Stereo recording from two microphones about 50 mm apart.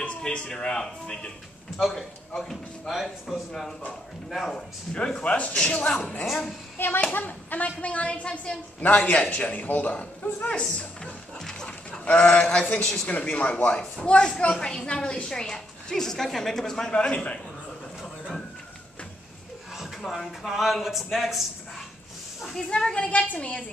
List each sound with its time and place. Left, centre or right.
0.0 s a woman's voice: left
1.8 s speech: centre
2.9 s speech: centre
4.6 s a woman's voice: centre
6.2 s speech: centre
7.1 s a woman's voice: left; by 13.1 s centre
13.2 s a woman's voice: left; by 16.9 s centre
16.9 s a woman's voice: left
20.0 s speech: centre
20.2 s speech: centre
22.5 s a woman's voice: centre